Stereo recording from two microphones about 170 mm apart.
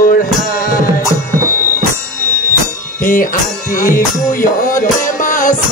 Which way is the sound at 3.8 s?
55° left (ahead or behind).